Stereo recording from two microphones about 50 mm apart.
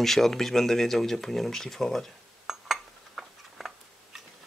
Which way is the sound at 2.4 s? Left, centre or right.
Centre.